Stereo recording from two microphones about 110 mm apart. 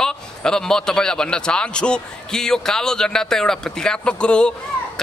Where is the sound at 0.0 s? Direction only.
5° left (ahead or behind).